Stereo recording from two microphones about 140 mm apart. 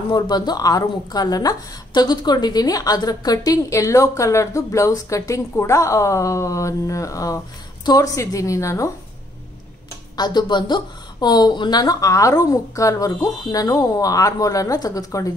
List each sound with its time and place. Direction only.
0.1 s a woman's voice: 30° left (ahead or behind)
10.1 s a woman's voice: 30° left (ahead or behind)